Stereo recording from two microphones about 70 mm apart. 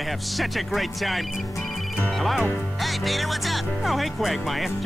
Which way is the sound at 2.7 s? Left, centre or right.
Centre.